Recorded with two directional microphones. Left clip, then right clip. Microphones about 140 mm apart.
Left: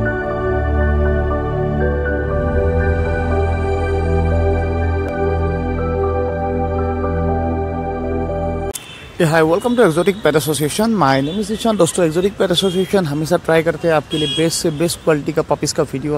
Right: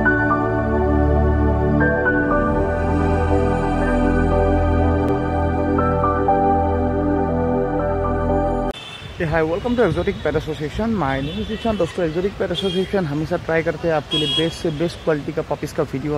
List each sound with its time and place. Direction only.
9.2 s speech: 35° left (ahead or behind)